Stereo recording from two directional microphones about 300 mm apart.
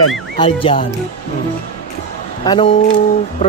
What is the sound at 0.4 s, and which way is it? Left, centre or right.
Speech, centre.